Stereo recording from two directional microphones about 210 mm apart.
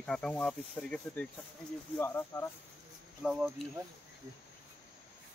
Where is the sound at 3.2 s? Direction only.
Centre (ahead or behind).